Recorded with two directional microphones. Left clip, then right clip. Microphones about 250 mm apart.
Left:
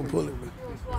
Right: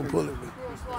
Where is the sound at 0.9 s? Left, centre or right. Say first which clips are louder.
Right 1 dB; right.